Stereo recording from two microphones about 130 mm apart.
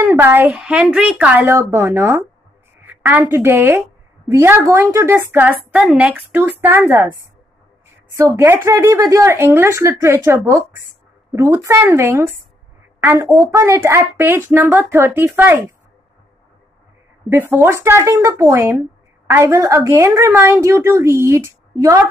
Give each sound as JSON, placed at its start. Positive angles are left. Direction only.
{"t": 0.0, "sound": "a woman's voice", "side_deg": -20}
{"t": 8.1, "sound": "speech", "side_deg": -25}
{"t": 17.3, "sound": "speech", "side_deg": -15}